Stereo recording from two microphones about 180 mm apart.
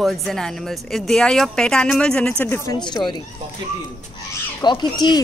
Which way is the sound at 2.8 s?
25° left (ahead or behind).